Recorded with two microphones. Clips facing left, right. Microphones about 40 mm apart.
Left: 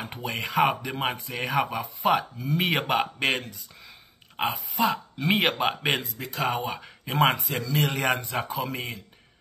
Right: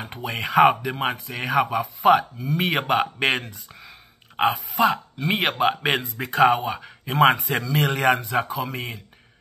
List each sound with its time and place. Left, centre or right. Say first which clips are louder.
0.2 s speech: right 7 dB; centre
6.2 s speech: right 7 dB; right
6.6 s speech: right 3 dB; centre